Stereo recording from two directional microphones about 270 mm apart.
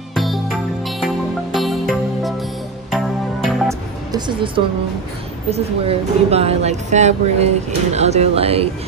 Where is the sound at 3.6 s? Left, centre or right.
Centre.